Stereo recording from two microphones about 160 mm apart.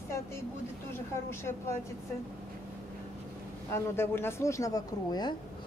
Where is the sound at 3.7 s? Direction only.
15° left (ahead or behind).